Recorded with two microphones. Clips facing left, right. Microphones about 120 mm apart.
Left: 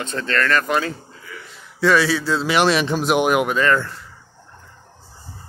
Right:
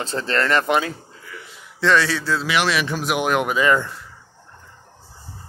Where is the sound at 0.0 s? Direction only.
30° right (ahead or behind).